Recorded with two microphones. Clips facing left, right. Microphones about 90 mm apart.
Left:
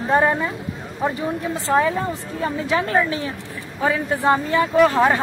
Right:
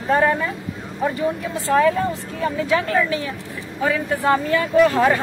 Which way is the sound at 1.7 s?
25° left (ahead or behind).